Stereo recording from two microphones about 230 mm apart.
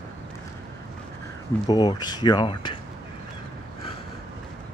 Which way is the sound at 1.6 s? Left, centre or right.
Centre.